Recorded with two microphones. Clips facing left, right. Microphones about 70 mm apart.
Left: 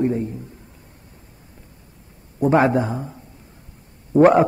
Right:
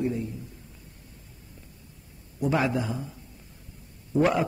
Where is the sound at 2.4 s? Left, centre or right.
Left.